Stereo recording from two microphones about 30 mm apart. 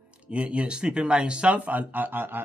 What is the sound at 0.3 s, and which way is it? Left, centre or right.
Speech, right.